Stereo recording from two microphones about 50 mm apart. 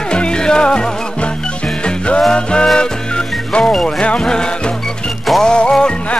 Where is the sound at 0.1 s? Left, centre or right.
Centre.